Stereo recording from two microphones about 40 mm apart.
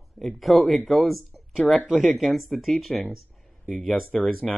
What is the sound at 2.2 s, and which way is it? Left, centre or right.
Speech, centre.